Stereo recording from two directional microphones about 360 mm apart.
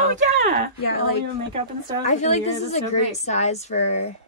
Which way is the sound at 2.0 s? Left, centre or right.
Centre.